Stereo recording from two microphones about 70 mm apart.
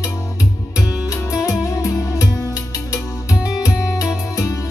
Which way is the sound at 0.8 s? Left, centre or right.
Left.